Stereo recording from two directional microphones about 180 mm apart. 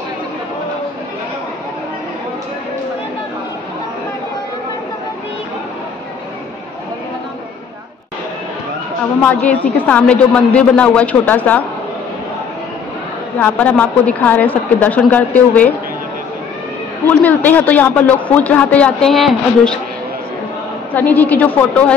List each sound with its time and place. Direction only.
9.2 s a man's voice: 10° left (ahead or behind)
13.4 s a man's voice: 10° left (ahead or behind)
17.1 s a man's voice: 10° left (ahead or behind)
20.9 s a man's voice: 10° left (ahead or behind)